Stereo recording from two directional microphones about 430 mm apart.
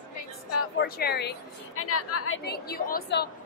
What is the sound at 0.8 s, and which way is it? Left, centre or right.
A woman's voice, left.